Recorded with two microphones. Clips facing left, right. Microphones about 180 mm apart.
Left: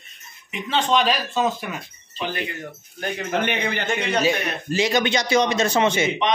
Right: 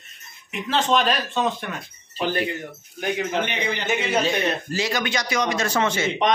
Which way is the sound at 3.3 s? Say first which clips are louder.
Left 2 dB; 55° left (ahead or behind).